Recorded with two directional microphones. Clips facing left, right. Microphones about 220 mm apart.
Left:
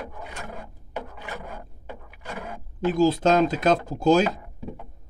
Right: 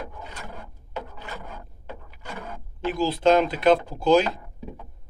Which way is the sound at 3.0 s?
45° left (ahead or behind).